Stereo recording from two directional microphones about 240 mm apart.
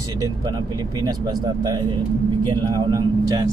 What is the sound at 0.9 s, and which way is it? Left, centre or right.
Speech, centre.